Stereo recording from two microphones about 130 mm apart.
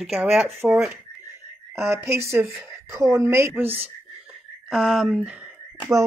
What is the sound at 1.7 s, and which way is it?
A woman's voice, 20° right (ahead or behind).